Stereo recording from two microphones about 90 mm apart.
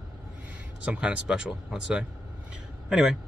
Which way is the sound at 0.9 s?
10° right (ahead or behind).